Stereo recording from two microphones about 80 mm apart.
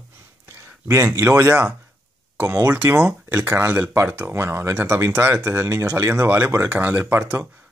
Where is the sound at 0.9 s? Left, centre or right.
Right.